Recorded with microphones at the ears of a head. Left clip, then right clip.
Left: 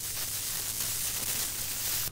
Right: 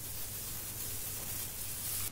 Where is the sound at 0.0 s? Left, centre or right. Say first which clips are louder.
Left 10 dB; left.